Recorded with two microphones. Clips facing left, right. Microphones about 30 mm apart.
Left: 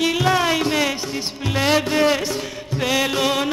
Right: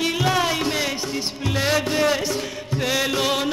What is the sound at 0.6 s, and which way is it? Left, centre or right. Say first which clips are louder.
Music: left 3 dB; centre.